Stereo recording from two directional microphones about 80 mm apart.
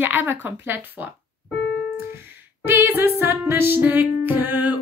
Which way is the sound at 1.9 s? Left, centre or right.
Right.